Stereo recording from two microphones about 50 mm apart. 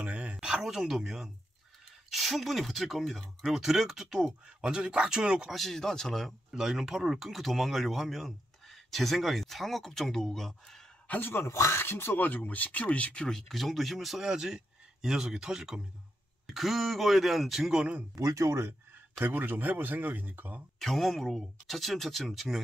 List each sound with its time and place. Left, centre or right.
0.0 s a sound: right
0.6 s speech: centre
5.5 s speech: centre
6.5 s speech: centre
11.1 s speech: left
11.4 s speech: left; by 17.8 s centre
18.1 s speech: right
19.1 s speech: right
20.8 s speech: centre